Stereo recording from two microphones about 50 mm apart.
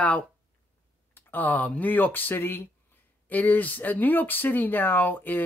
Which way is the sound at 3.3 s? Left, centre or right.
Left.